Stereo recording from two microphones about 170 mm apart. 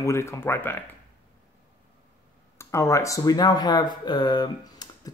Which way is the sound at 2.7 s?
15° left (ahead or behind).